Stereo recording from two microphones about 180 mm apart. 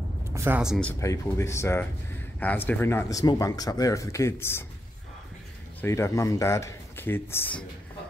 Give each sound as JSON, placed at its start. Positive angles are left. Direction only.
{"t": 0.3, "sound": "a sound", "side_deg": -15}
{"t": 0.6, "sound": "speech", "side_deg": -5}
{"t": 0.8, "sound": "speech", "side_deg": 15}
{"t": 5.8, "sound": "speech", "side_deg": 15}